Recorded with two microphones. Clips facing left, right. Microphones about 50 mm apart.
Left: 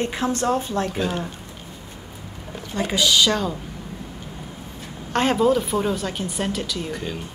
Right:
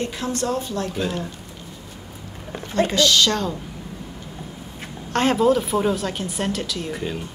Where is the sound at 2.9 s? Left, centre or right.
Centre.